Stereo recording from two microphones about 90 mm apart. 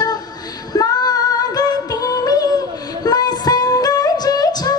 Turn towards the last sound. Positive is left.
turn(degrees=45)  # may be behind; listen again after turning